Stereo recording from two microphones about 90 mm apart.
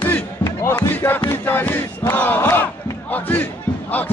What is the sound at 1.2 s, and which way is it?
Battle cry, 25° left (ahead or behind).